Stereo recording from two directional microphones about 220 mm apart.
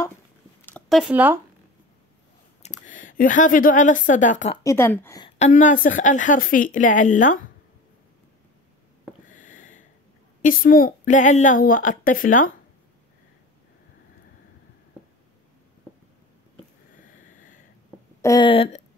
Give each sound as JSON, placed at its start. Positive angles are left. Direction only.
{"t": 0.7, "sound": "speech", "side_deg": 5}
{"t": 2.6, "sound": "a woman's voice", "side_deg": 35}
{"t": 4.6, "sound": "a woman's voice", "side_deg": 10}
{"t": 5.4, "sound": "a woman's voice", "side_deg": 35}
{"t": 9.3, "sound": "a sound", "side_deg": 35}
{"t": 10.4, "sound": "a woman's voice", "side_deg": 40}
{"t": 18.2, "sound": "speech", "side_deg": 20}